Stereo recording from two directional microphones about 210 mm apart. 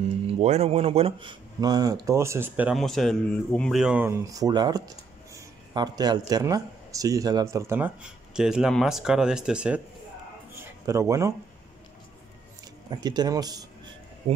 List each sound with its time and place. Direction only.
0.3 s speech: 30° right (ahead or behind); by 9.8 s 5° right (ahead or behind)
10.5 s a sound: 15° right (ahead or behind)
12.9 s speech: 20° right (ahead or behind)
14.2 s speech: 30° right (ahead or behind)